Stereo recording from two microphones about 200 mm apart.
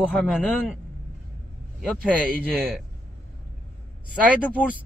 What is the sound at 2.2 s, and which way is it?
Speech, 50° right (ahead or behind).